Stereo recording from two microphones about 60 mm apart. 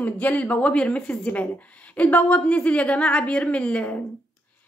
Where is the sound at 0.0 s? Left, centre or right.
Left.